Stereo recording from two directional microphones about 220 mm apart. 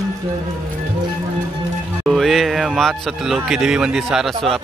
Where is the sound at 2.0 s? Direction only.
Centre (ahead or behind).